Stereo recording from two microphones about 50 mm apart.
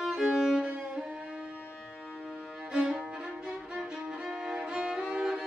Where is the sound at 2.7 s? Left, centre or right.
Centre.